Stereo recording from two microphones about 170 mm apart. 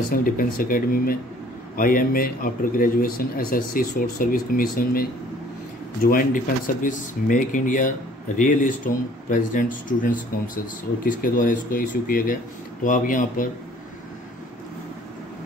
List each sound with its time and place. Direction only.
0.1 s a man's voice: 55° left (ahead or behind)
6.0 s a man's voice: 55° left (ahead or behind)